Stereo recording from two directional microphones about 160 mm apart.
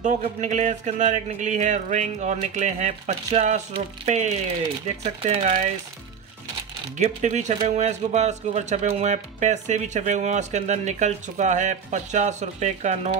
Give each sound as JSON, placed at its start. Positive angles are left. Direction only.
{"t": 0.0, "sound": "speech", "side_deg": -50}
{"t": 7.0, "sound": "speech", "side_deg": -45}